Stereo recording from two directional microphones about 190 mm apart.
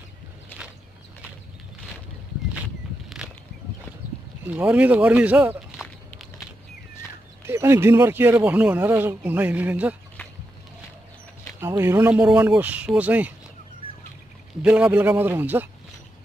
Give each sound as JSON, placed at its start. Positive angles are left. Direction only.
{"t": 0.5, "sound": "walk", "side_deg": 10}
{"t": 3.2, "sound": "a sound", "side_deg": -5}
{"t": 4.5, "sound": "speech", "side_deg": -10}
{"t": 7.4, "sound": "speech", "side_deg": -15}
{"t": 11.6, "sound": "speech", "side_deg": -15}
{"t": 14.6, "sound": "speech", "side_deg": -5}